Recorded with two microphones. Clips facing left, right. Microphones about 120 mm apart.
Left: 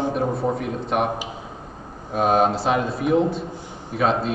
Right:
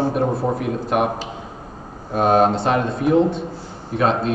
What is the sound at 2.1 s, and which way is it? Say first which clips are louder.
Speech: right 3 dB; centre (ahead or behind).